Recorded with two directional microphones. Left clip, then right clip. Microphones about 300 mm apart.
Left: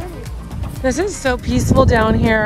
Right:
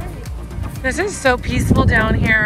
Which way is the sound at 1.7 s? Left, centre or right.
Left.